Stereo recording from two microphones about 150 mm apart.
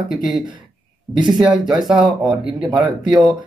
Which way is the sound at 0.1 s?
Centre (ahead or behind).